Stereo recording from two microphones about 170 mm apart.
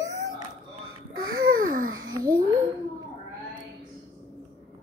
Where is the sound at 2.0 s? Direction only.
25° right (ahead or behind).